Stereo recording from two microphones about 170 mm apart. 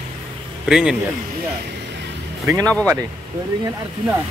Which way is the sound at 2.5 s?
5° left (ahead or behind).